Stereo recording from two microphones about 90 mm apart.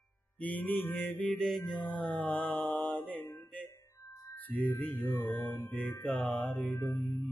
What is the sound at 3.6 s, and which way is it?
Tuning fork, 35° left (ahead or behind).